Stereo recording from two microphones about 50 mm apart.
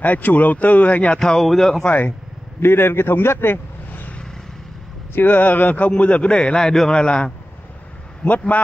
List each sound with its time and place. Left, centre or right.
0.0 s speech: left
1.2 s speech: centre
1.9 s speech: left
2.6 s a man's voice: left
5.1 s a man's voice: left; by 7.3 s centre
8.2 s speech: left